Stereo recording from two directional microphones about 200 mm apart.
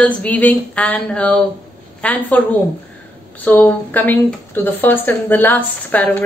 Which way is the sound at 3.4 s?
10° left (ahead or behind).